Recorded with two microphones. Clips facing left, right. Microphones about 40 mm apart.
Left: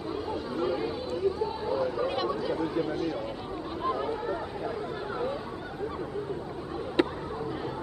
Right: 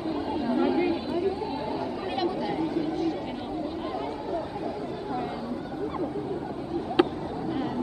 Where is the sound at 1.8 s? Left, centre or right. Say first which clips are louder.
Left 3 dB; centre.